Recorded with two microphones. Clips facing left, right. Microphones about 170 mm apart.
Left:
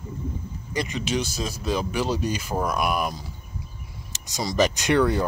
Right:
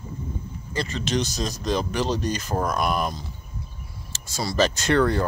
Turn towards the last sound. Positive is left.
turn(degrees=10)  # may be behind; listen again after turning